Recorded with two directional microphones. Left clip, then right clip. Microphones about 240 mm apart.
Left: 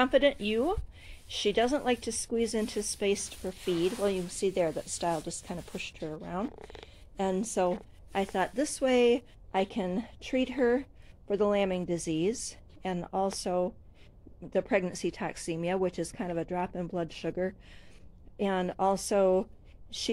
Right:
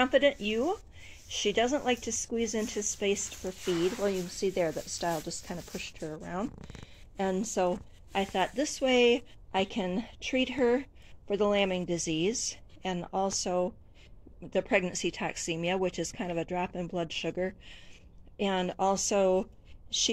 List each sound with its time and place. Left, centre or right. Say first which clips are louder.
0.0 s speech: even; centre